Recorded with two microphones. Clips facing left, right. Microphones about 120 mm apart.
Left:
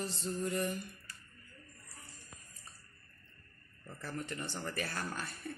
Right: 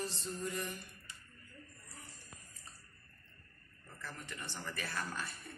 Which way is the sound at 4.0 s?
45° left (ahead or behind).